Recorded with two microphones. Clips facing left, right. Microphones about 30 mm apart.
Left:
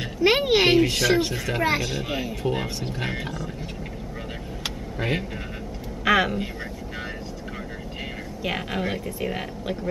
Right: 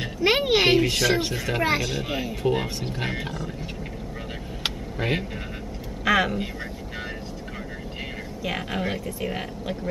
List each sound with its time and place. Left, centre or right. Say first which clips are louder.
0.0 s speech: left 1 dB; centre
4.9 s speech: left 1 dB; centre
6.0 s speech: left 1 dB; centre
8.5 s speech: left 1 dB; centre